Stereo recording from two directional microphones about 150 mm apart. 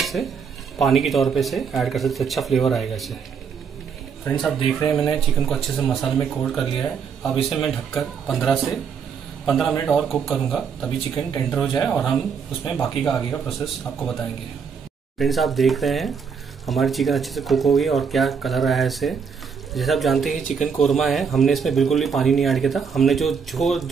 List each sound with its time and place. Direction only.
0.0 s dishes: centre (ahead or behind)
0.7 s speech: centre (ahead or behind)
4.2 s speech: 5° left (ahead or behind)
15.1 s speech: centre (ahead or behind)